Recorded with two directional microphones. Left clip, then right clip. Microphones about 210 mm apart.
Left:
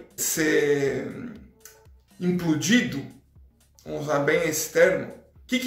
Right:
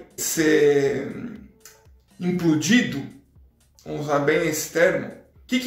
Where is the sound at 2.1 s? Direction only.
15° left (ahead or behind).